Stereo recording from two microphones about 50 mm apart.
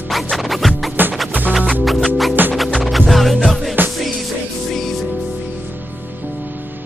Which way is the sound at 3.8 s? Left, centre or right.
Right.